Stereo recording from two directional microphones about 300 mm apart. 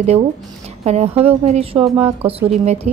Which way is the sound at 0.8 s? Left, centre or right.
Right.